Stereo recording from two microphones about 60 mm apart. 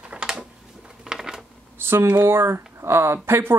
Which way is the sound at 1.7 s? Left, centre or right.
Right.